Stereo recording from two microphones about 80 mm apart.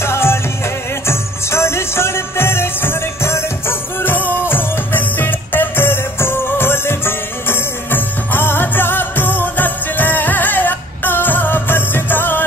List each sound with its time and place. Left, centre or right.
0.0 s music: left